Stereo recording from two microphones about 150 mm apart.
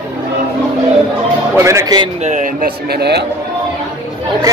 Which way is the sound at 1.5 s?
20° right (ahead or behind).